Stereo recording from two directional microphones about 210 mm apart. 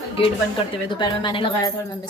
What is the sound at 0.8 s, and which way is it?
Speech, 20° left (ahead or behind).